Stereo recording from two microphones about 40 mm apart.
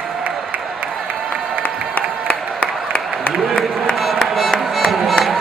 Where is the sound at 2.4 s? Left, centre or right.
Right.